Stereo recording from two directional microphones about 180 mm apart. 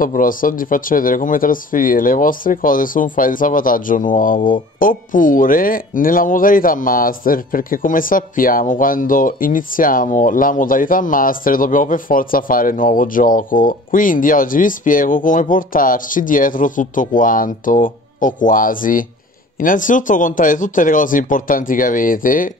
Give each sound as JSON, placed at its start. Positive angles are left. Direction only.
{"t": 0.0, "sound": "speech", "side_deg": 50}